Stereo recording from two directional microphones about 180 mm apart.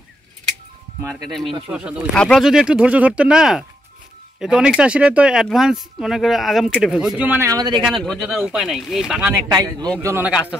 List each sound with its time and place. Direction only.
1.2 s a man's voice: centre (ahead or behind); by 7.8 s 20° right (ahead or behind)
7.8 s speech: centre (ahead or behind)
9.3 s a man's voice: 20° right (ahead or behind)